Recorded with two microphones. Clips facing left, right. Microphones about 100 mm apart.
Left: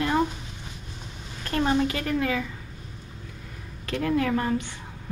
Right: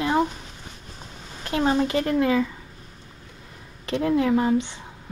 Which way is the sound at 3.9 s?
20° right (ahead or behind).